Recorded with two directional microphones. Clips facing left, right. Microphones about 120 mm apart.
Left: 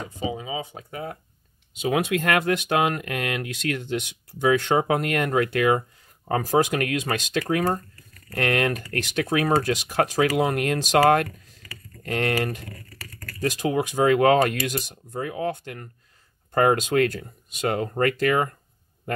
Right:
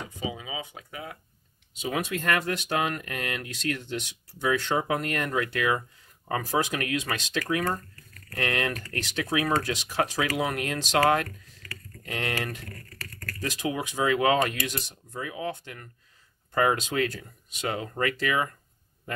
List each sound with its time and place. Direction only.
0.2 s speech: 30° left (ahead or behind)
1.8 s speech: 65° left (ahead or behind)
5.8 s speech: 40° left (ahead or behind)
11.2 s typing: 5° left (ahead or behind)
12.0 s speech: 50° left (ahead or behind)
12.7 s a sound: 10° left (ahead or behind)
13.4 s speech: 45° left (ahead or behind)